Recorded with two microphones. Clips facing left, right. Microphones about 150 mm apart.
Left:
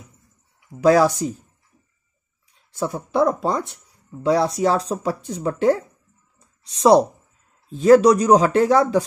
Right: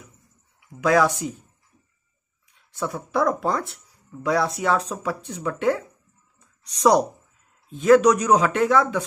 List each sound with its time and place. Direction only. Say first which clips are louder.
0.7 s speech: left 4 dB; 35° left (ahead or behind)
2.5 s speech: left 3 dB; 30° left (ahead or behind)
4.2 s speech: left 5 dB; 30° left (ahead or behind)